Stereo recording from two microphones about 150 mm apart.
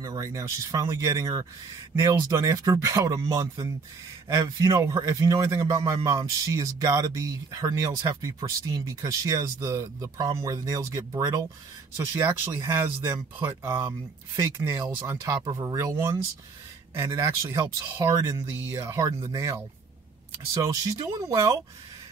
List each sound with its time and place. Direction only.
0.0 s speech: 20° right (ahead or behind)
20.6 s speech: 25° right (ahead or behind)